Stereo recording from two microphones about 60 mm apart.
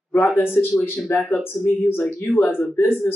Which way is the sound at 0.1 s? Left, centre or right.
Left.